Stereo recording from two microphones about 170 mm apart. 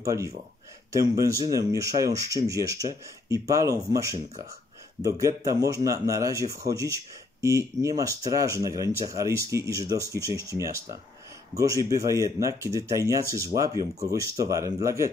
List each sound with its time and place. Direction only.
0.0 s speech: 15° right (ahead or behind)